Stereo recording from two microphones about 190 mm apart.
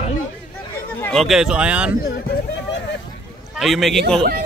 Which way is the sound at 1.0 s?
5° left (ahead or behind).